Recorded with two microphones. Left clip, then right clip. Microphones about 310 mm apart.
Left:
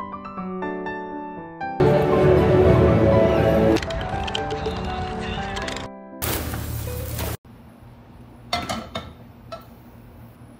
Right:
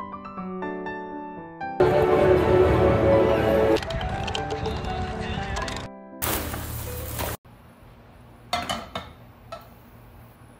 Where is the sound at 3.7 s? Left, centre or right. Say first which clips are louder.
Left 2 dB; centre.